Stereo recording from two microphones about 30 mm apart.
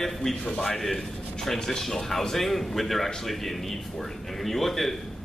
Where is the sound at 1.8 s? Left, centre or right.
Centre.